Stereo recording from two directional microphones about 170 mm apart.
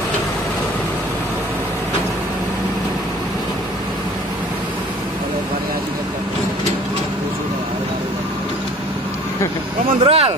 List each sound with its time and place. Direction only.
10.0 s speech: 35° right (ahead or behind)